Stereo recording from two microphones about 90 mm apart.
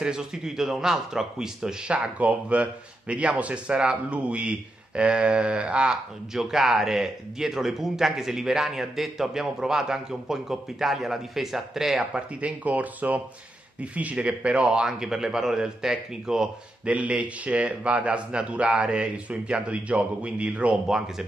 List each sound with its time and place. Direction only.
0.0 s a man's voice: 5° right (ahead or behind)